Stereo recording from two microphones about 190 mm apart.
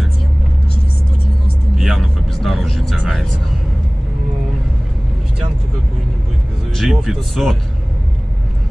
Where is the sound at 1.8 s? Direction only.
Centre (ahead or behind).